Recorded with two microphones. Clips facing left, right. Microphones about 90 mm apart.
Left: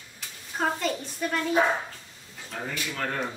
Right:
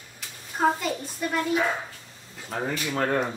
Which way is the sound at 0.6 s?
5° right (ahead or behind).